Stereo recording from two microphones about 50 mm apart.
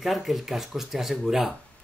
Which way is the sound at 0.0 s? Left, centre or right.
Centre.